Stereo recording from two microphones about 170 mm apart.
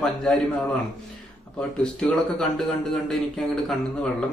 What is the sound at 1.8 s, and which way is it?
A man's voice, 5° left (ahead or behind).